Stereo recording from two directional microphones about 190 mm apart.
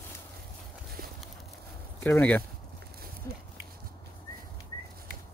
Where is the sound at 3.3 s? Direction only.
15° left (ahead or behind).